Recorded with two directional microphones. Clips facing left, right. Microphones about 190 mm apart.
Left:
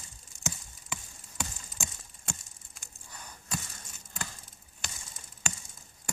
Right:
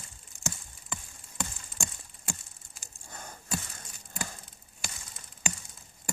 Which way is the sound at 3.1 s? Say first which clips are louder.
Right 4 dB; 50° right (ahead or behind).